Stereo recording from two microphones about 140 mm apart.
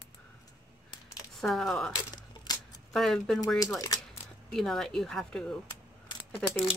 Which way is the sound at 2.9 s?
Centre (ahead or behind).